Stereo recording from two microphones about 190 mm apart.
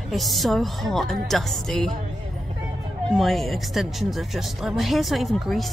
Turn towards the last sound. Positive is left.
turn(degrees=0)  # may be behind; listen again after turning